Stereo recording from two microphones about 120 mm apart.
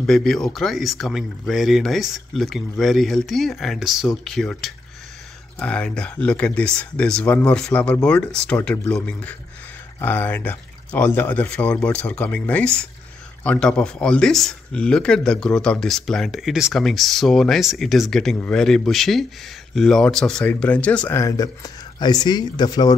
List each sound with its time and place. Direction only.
0.0 s speech: 5° left (ahead or behind)
21.1 s speech: 30° left (ahead or behind)